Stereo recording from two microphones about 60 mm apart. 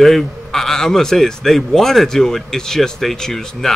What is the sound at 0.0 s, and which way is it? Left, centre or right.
A man's voice, centre.